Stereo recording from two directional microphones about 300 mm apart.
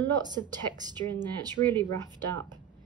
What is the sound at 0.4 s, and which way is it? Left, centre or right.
Speech, right.